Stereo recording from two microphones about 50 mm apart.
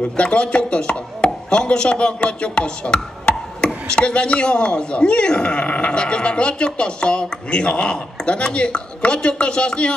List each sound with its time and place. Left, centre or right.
0.2 s chopping: left
8.5 s speech: centre